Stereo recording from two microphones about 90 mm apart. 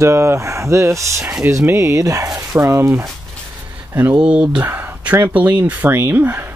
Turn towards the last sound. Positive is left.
turn(degrees=-20)  # may be behind; listen again after turning